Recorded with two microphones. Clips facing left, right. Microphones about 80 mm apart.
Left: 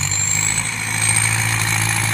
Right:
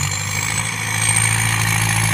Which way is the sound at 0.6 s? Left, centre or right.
Centre.